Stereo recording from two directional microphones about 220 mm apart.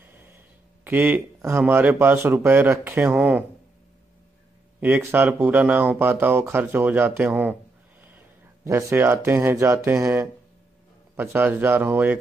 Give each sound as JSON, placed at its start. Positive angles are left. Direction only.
{"t": 0.0, "sound": "a sound", "side_deg": -10}
{"t": 0.8, "sound": "speech", "side_deg": -10}
{"t": 4.7, "sound": "speech", "side_deg": -5}
{"t": 8.6, "sound": "speech", "side_deg": -10}